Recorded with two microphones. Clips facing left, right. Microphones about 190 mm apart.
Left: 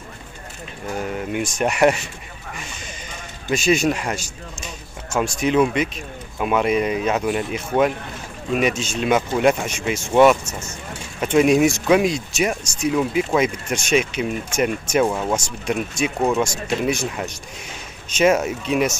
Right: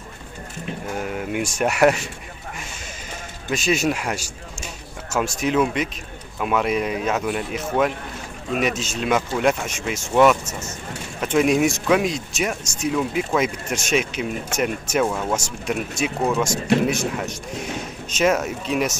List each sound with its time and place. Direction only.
1.1 s speech: 5° right (ahead or behind)
3.4 s speech: centre (ahead or behind)
15.0 s speech: 10° left (ahead or behind)
15.3 s speech: 5° right (ahead or behind)